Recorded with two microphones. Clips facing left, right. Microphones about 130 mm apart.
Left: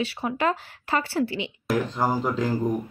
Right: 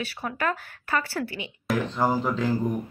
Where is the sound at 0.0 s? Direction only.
25° left (ahead or behind).